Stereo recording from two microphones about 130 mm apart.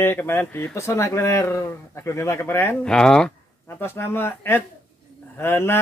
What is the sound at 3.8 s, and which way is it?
Speech, 15° left (ahead or behind).